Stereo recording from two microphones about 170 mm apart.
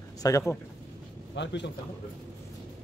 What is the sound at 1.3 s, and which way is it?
Speech, 90° left.